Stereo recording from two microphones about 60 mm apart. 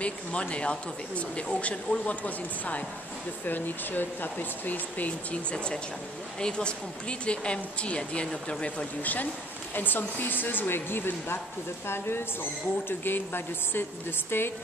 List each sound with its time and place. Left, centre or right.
0.0 s speech: centre; by 11.3 s left
12.8 s speech: left